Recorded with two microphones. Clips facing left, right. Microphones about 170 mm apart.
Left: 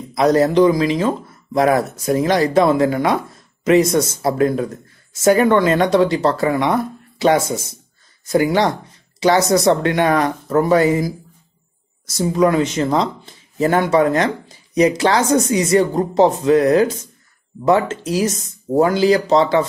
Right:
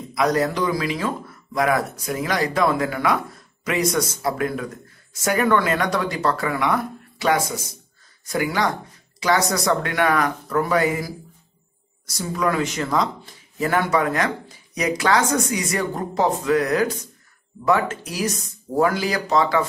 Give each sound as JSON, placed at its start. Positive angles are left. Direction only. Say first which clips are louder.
{"t": 0.1, "sound": "speech", "louder": "left 7 dB", "side_deg": 30}
{"t": 12.2, "sound": "speech", "louder": "left 7 dB", "side_deg": 25}